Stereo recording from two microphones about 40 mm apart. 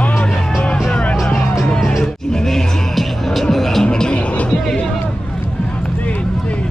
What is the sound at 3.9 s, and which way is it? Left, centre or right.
Music, left.